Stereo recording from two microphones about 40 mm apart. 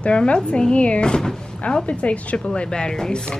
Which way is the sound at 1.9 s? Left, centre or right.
Left.